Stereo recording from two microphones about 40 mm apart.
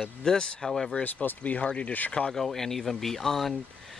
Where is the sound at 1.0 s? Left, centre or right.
Left.